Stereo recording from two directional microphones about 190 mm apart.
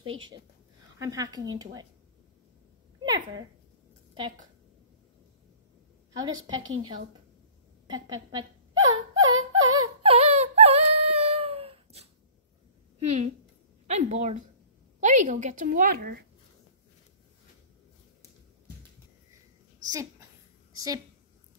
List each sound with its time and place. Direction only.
0.9 s a woman's voice: 20° right (ahead or behind)
3.0 s speech: 20° right (ahead or behind)
6.1 s a woman's voice: 20° right (ahead or behind)
6.5 s a woman's voice: 90° right
7.8 s whimper: 20° right (ahead or behind)
13.8 s a woman's voice: 35° right (ahead or behind); by 16.3 s 50° right (ahead or behind)
19.9 s a sound: 15° right (ahead or behind)
20.7 s a woman's voice: 20° right (ahead or behind)